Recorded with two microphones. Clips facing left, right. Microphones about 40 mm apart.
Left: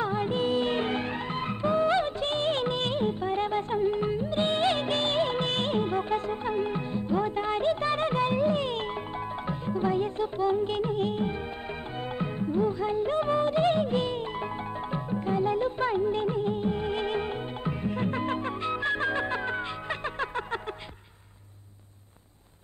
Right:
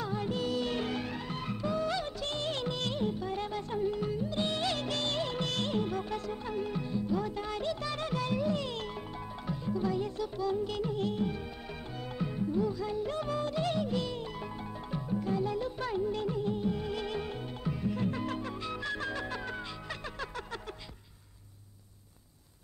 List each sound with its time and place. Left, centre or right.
0.0 s music: left